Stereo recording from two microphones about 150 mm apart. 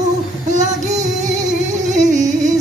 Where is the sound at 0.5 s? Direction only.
55° right (ahead or behind).